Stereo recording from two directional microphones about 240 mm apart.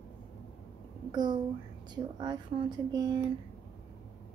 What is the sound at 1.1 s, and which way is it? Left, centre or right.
Speech, centre.